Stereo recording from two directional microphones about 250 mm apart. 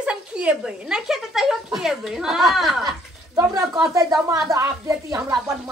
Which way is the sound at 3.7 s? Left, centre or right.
Centre.